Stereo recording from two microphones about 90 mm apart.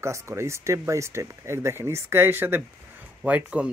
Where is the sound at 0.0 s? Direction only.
30° right (ahead or behind).